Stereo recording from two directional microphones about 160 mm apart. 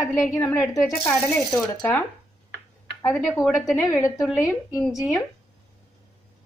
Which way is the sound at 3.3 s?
Centre (ahead or behind).